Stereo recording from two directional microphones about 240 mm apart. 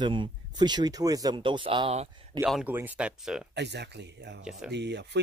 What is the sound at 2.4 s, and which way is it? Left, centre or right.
Speech, centre.